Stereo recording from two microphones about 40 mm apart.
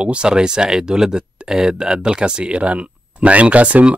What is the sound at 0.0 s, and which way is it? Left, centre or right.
Speech, right.